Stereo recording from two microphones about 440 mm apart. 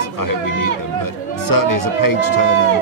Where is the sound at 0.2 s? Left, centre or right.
Left.